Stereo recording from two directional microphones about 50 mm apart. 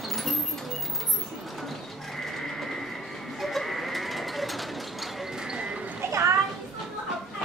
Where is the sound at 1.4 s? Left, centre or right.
Centre.